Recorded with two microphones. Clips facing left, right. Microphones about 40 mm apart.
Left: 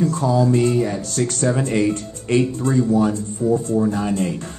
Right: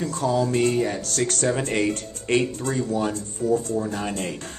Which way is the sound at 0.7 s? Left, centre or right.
Right.